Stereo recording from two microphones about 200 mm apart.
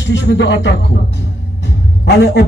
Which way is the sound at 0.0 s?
60° left (ahead or behind).